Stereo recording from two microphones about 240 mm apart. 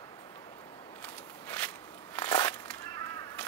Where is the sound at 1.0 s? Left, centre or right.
Centre.